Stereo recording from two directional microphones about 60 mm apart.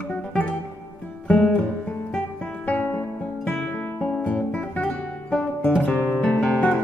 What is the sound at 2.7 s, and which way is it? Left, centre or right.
Music, left.